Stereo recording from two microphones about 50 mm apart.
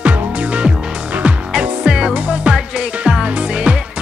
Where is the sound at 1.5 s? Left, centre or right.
Centre.